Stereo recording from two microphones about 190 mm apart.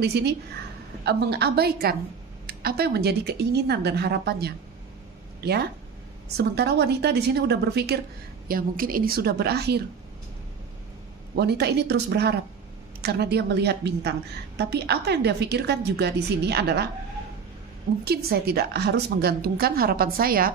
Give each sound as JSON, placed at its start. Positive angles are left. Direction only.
{"t": 0.0, "sound": "a woman's voice", "side_deg": -60}
{"t": 8.5, "sound": "a woman's voice", "side_deg": -50}
{"t": 11.3, "sound": "a woman's voice", "side_deg": -60}
{"t": 18.0, "sound": "a woman's voice", "side_deg": -55}